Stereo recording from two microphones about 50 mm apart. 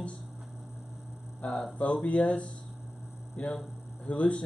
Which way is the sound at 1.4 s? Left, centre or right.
Left.